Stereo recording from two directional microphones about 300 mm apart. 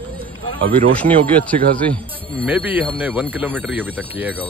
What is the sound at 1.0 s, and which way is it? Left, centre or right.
Speech, centre.